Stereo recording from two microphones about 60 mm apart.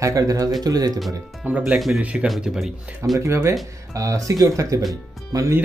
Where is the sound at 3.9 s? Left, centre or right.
Right.